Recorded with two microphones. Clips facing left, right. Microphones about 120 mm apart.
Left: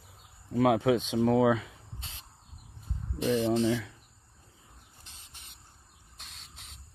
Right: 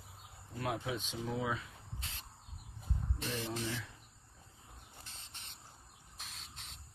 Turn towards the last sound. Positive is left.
turn(degrees=0)  # may be behind; listen again after turning